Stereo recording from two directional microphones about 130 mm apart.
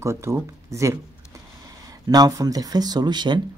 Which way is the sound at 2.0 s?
30° right (ahead or behind).